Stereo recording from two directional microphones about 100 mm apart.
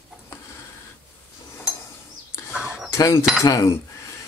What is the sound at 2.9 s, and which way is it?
Speech, 30° left (ahead or behind).